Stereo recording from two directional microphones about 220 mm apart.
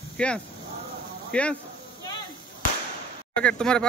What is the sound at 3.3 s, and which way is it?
Speech, 5° left (ahead or behind).